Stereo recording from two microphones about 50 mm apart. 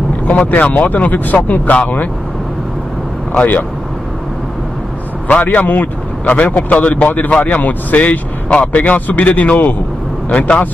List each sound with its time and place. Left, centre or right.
0.4 s a man's voice: left
5.3 s a man's voice: left